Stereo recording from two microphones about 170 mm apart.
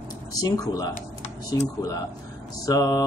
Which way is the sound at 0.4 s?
20° left (ahead or behind).